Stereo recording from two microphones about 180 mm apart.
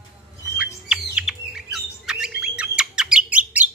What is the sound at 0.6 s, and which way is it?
Bird, 5° right (ahead or behind).